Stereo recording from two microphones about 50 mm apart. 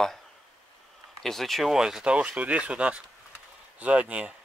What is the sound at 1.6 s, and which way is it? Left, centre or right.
Speech, centre.